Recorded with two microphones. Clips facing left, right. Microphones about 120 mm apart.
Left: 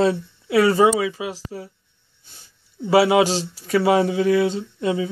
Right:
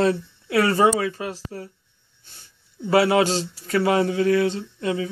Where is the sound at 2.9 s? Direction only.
10° left (ahead or behind).